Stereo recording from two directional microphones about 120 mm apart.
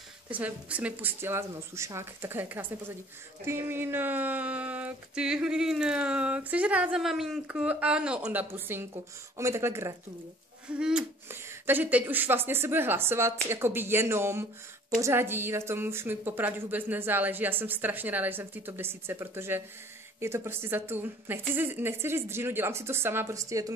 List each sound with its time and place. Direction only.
0.3 s a woman's voice: 10° right (ahead or behind)
10.7 s a woman's voice: 10° right (ahead or behind); by 23.7 s 30° right (ahead or behind)